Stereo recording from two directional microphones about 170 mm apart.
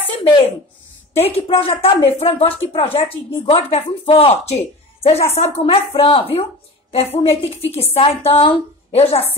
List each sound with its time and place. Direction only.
0.2 s speech: 30° left (ahead or behind)